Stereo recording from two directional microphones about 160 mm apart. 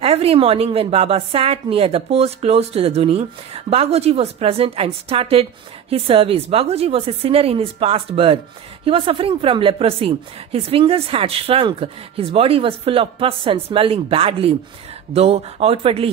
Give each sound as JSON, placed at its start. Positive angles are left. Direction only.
{"t": 0.0, "sound": "a woman's voice", "side_deg": -40}